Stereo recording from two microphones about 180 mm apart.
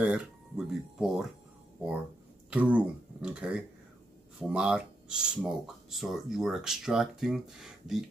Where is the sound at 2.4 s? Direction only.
5° right (ahead or behind).